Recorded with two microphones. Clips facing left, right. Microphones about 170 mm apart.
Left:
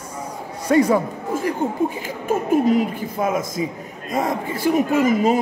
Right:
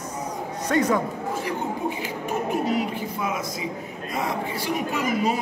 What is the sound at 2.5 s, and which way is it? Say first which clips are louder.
Speech: left 9 dB; 50° left (ahead or behind).